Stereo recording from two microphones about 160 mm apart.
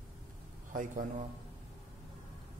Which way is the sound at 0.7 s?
55° right (ahead or behind).